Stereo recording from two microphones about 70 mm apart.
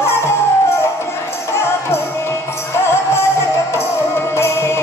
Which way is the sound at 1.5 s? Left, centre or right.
Left.